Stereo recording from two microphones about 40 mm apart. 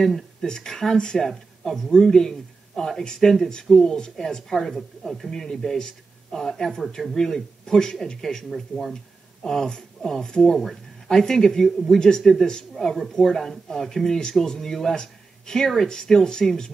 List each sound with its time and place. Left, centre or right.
0.0 s speech: centre